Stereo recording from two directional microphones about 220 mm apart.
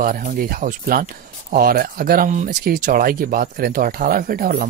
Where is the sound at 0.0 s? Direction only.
40° right (ahead or behind).